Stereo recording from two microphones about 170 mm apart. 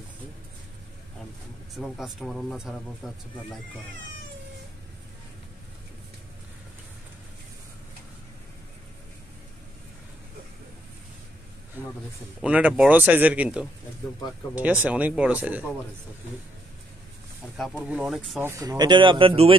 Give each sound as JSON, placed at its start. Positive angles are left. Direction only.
{"t": 1.8, "sound": "speech", "side_deg": 0}
{"t": 12.4, "sound": "speech", "side_deg": -5}
{"t": 17.6, "sound": "speech", "side_deg": -5}
{"t": 18.4, "sound": "speech", "side_deg": -15}